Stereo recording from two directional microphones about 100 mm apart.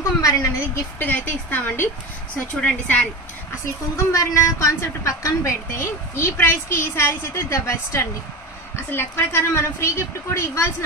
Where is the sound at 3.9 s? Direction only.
30° left (ahead or behind).